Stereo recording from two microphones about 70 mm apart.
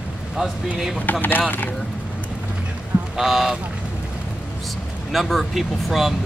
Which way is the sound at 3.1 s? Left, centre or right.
Centre.